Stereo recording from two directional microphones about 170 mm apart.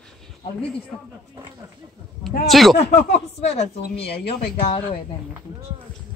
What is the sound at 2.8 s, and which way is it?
Speech, 35° left (ahead or behind).